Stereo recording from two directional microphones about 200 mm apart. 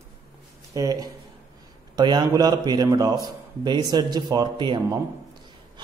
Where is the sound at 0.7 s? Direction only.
20° right (ahead or behind).